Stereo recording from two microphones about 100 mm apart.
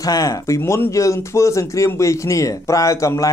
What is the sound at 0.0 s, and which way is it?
Speech, 35° left (ahead or behind).